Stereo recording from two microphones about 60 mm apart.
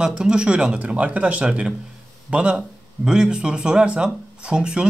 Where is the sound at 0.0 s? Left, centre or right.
Centre.